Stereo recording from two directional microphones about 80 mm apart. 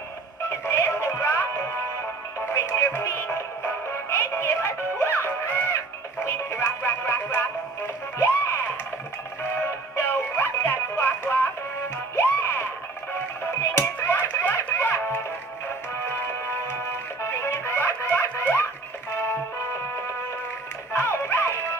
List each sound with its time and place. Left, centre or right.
0.5 s music: left
12.2 s a sound: left
13.1 s music: left
17.2 s music: left
20.9 s music: left